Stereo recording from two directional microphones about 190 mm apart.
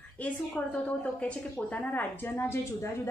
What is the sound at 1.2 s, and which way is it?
Speech, 5° left (ahead or behind).